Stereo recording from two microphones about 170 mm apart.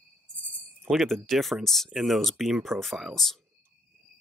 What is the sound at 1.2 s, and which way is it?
Speech, centre (ahead or behind).